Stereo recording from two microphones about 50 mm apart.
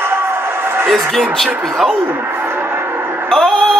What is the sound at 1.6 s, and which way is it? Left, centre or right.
Speech, centre.